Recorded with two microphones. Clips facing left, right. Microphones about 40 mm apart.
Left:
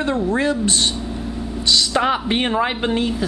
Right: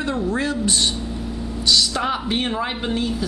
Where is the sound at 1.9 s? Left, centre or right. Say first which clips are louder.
Left 4 dB; left.